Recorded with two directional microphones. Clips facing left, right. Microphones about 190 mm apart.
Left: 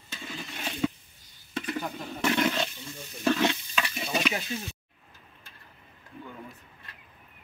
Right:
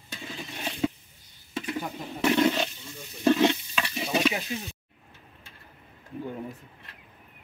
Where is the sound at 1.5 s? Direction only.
15° right (ahead or behind).